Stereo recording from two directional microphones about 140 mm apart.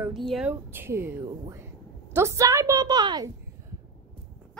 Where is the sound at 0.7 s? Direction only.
15° right (ahead or behind).